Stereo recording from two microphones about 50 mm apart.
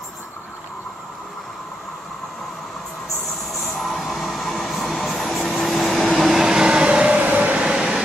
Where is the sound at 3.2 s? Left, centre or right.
Centre; by 7.6 s right.